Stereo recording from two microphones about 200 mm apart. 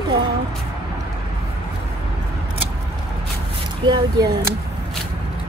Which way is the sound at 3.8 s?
25° right (ahead or behind).